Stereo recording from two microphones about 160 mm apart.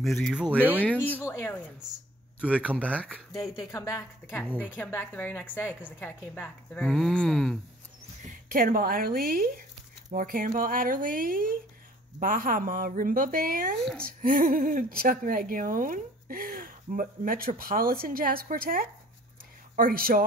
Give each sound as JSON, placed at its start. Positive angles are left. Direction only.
{"t": 0.0, "sound": "speech", "side_deg": 0}
{"t": 1.0, "sound": "a woman's voice", "side_deg": 10}
{"t": 2.8, "sound": "a woman's voice", "side_deg": 10}
{"t": 3.7, "sound": "a woman's voice", "side_deg": 20}
{"t": 8.3, "sound": "speech", "side_deg": -65}
{"t": 13.7, "sound": "speech", "side_deg": 5}
{"t": 14.0, "sound": "speech", "side_deg": -60}